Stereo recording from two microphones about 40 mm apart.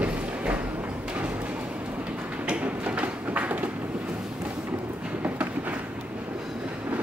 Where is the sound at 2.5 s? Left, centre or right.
Right.